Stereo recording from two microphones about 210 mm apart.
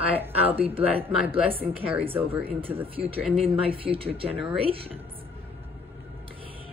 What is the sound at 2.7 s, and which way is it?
Speech, 10° right (ahead or behind).